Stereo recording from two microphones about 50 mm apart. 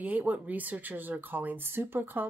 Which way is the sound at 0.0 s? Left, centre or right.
Right.